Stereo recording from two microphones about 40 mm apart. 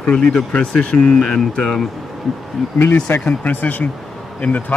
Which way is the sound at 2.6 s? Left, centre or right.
Centre.